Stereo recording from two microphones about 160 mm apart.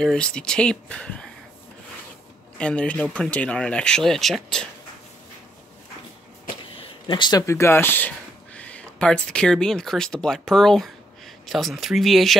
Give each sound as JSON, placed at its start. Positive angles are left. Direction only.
{"t": 0.0, "sound": "speech", "side_deg": 5}
{"t": 2.5, "sound": "speech", "side_deg": 5}
{"t": 6.8, "sound": "speech", "side_deg": 30}